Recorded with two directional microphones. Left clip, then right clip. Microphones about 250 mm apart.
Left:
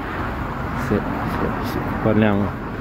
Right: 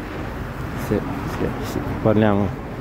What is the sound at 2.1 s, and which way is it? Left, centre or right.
Speech, centre.